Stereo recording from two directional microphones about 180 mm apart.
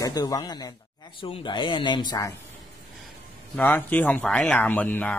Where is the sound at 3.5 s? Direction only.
10° left (ahead or behind).